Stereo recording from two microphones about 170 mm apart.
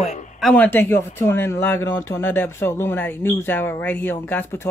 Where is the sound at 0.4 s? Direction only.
5° left (ahead or behind).